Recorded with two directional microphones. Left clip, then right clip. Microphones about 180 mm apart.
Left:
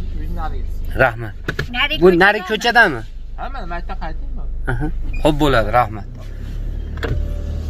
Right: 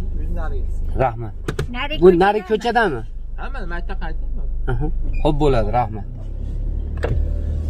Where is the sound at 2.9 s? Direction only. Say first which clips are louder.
Left 2 dB; 35° left (ahead or behind).